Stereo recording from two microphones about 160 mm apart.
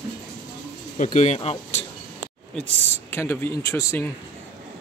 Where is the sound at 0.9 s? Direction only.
50° left (ahead or behind).